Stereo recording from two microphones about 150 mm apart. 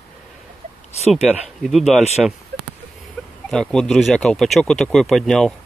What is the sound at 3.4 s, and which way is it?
Speech, 5° left (ahead or behind).